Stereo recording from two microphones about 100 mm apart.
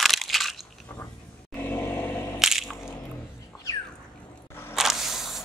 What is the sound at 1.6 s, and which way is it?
Vehicle, 20° left (ahead or behind).